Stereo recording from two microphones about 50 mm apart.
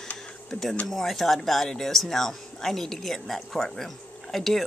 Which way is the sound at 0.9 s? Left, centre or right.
Centre.